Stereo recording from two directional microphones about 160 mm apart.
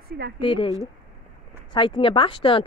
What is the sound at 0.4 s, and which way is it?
Speech, 35° left (ahead or behind).